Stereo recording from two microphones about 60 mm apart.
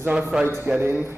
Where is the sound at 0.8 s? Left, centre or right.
Right.